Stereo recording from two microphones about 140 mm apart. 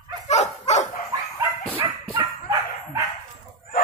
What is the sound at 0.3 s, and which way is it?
Dog, 55° left (ahead or behind).